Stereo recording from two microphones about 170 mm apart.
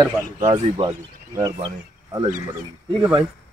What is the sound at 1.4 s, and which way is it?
Speech, 20° right (ahead or behind).